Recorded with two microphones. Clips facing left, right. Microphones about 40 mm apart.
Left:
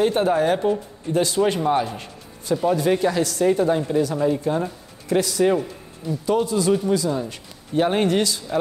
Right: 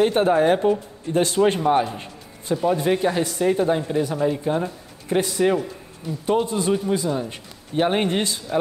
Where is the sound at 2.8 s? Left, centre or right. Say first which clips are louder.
Left 1 dB; right.